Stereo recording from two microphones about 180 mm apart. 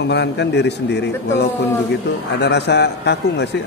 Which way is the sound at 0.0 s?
70° left (ahead or behind).